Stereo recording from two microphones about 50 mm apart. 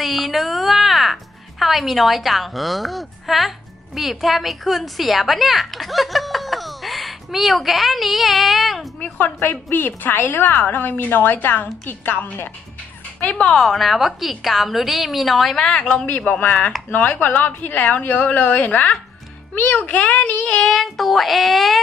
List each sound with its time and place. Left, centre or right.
0.0 s a woman's voice: centre
9.4 s a woman's voice: left
13.3 s a woman's voice: left
13.6 s a woman's voice: centre
15.6 s child singing: centre
16.1 s a woman's voice: left
20.4 s child singing: centre
20.7 s a woman's voice: centre